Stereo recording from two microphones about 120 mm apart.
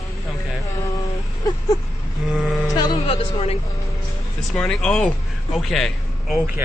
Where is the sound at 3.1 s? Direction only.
55° left (ahead or behind).